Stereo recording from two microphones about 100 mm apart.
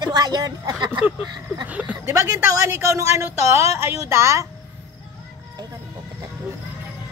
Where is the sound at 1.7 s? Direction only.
15° right (ahead or behind).